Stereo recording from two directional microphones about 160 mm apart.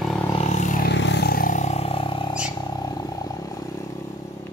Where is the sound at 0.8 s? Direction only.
90° left; by 3.8 s 20° left (ahead or behind).